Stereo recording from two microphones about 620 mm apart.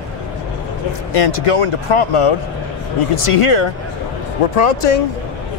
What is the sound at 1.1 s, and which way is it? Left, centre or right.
Speech, left.